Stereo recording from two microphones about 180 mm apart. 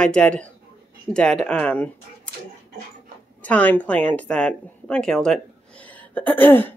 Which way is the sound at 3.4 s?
10° left (ahead or behind).